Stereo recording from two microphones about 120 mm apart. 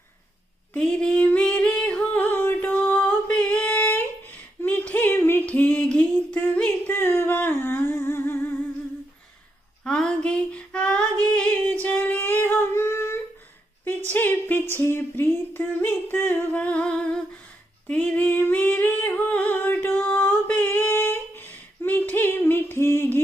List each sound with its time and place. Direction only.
0.7 s female singing: 10° left (ahead or behind)
4.6 s a sound: 15° left (ahead or behind)
9.8 s female singing: 5° left (ahead or behind)